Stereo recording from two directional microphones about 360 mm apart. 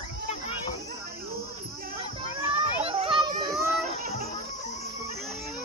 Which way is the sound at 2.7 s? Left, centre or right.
Centre.